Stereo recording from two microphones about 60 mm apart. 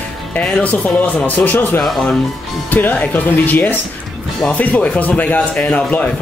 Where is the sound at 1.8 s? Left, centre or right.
Centre.